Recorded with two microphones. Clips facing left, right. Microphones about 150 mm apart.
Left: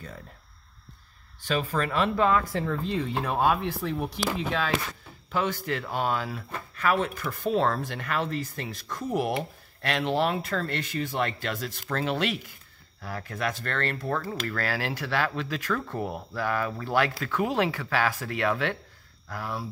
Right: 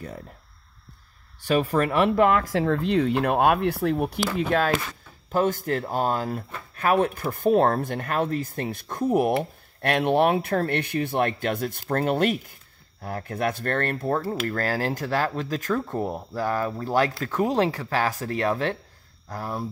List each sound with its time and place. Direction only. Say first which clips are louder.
1.5 s speech: right 6 dB; 50° right (ahead or behind)
14.0 s speech: right 5 dB; 30° right (ahead or behind)